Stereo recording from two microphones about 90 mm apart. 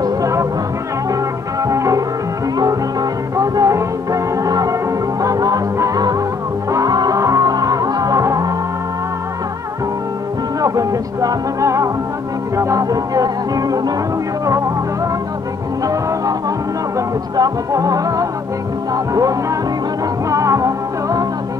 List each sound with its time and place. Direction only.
0.0 s music: 35° right (ahead or behind)
1.6 s music: 35° right (ahead or behind)
10.6 s music: 40° right (ahead or behind)
15.8 s music: 40° right (ahead or behind)
20.2 s music: 35° right (ahead or behind)